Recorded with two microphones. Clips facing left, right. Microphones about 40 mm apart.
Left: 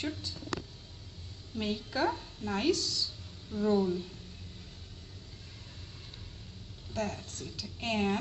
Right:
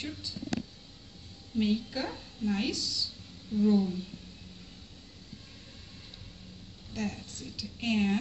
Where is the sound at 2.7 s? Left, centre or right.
Left.